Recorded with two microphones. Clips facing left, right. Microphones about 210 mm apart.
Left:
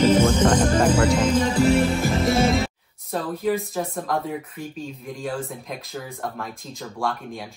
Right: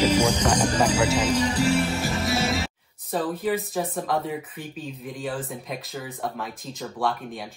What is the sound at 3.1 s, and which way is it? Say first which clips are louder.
Speech: left 1 dB; centre (ahead or behind).